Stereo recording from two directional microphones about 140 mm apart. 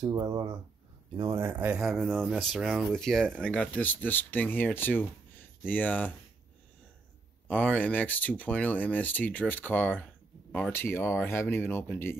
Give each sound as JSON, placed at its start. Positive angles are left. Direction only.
{"t": 0.0, "sound": "speech", "side_deg": -25}
{"t": 1.4, "sound": "speech", "side_deg": -15}
{"t": 1.9, "sound": "speech", "side_deg": 0}
{"t": 7.4, "sound": "speech", "side_deg": 10}